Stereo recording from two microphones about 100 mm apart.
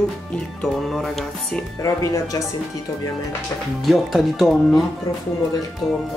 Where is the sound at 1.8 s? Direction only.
35° left (ahead or behind).